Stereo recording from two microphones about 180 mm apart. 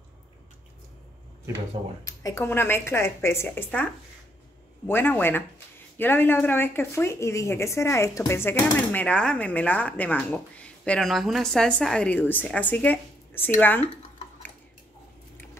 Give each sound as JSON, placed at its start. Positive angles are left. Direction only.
{"t": 2.0, "sound": "speech", "side_deg": 15}